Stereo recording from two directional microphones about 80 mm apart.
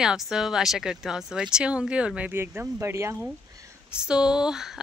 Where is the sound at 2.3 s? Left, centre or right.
Right.